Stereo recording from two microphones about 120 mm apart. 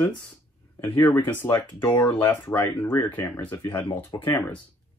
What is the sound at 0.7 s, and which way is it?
Speech, 15° left (ahead or behind).